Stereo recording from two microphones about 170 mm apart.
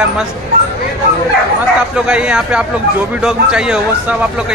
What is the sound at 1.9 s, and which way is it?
A man's voice, 5° right (ahead or behind).